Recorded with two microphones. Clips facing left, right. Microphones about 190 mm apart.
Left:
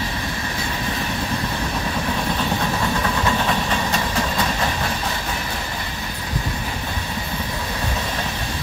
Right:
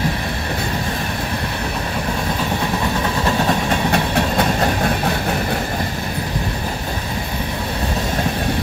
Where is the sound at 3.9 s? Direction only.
60° right (ahead or behind).